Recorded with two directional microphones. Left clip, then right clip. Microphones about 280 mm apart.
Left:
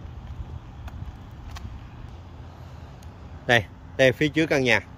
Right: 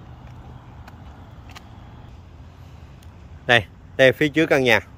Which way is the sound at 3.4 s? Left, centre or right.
Centre.